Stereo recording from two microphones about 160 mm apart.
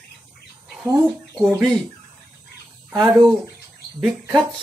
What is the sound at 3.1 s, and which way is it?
Speech, 20° right (ahead or behind).